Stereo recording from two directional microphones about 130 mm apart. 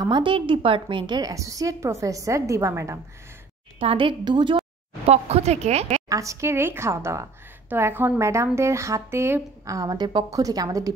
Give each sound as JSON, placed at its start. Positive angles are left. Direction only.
{"t": 0.0, "sound": "a woman's voice", "side_deg": -40}
{"t": 3.8, "sound": "a woman's voice", "side_deg": -40}
{"t": 5.0, "sound": "speech", "side_deg": -55}
{"t": 6.0, "sound": "a woman's voice", "side_deg": -25}